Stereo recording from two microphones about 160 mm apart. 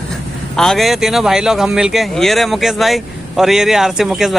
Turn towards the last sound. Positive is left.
turn(degrees=0)  # may be behind; listen again after turning